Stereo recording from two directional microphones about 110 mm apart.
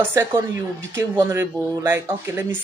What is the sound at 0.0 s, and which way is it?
Speech, 20° right (ahead or behind).